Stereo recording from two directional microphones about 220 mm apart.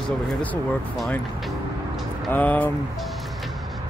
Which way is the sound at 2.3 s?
5° left (ahead or behind).